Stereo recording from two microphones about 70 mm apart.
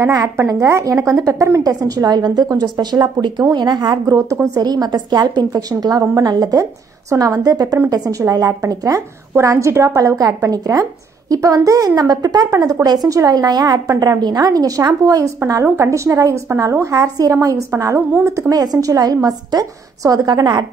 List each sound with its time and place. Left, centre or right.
0.0 s a woman's voice: right
1.6 s a woman's voice: right
2.0 s a woman's voice: right
3.5 s a woman's voice: right
4.6 s a woman's voice: right
18.6 s a woman's voice: right